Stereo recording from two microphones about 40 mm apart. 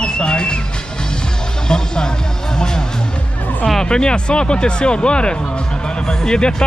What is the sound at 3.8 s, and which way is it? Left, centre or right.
Speech, left.